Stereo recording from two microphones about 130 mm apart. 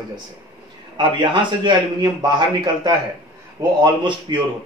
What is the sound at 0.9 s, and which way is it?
A man's voice, 35° right (ahead or behind).